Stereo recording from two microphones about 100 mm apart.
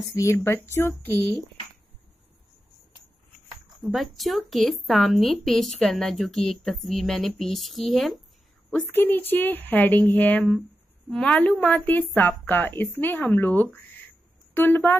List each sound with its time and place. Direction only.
0.1 s a woman's voice: 30° left (ahead or behind)
3.8 s a woman's voice: centre (ahead or behind)
8.6 s a woman's voice: 15° left (ahead or behind)